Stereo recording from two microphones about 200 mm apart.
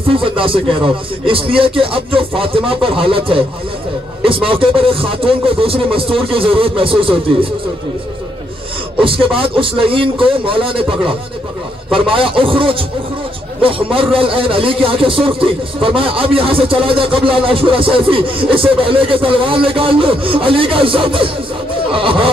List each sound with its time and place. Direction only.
0.1 s speech: 25° right (ahead or behind)
9.0 s speech: 25° right (ahead or behind)